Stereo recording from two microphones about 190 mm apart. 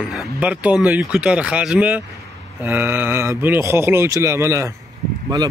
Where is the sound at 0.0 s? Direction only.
5° right (ahead or behind).